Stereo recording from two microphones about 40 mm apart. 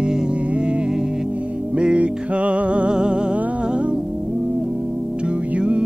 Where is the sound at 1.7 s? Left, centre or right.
Right.